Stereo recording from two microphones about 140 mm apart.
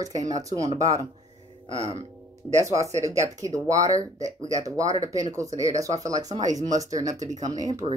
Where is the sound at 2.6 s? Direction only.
20° right (ahead or behind).